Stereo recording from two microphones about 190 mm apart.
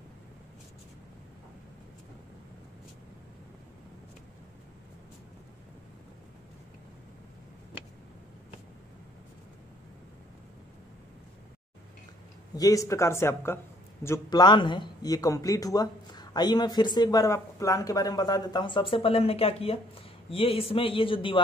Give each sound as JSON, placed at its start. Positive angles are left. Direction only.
{"t": 12.5, "sound": "speech", "side_deg": 20}